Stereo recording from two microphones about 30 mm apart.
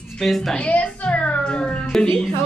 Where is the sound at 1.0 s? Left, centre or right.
Left.